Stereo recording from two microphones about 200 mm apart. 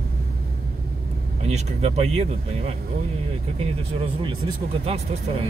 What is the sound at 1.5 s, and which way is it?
Speech, 35° right (ahead or behind).